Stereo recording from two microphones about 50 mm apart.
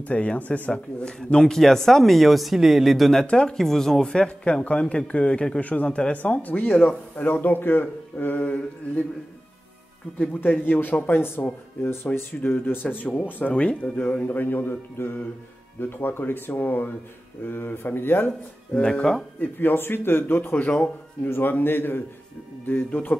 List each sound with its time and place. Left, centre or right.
0.0 s a man's voice: left
0.7 s speech: centre
3.3 s a man's voice: centre
5.6 s speech: left
5.9 s speech: centre
6.1 s speech: left
10.6 s speech: left
18.7 s speech: centre
19.6 s speech: left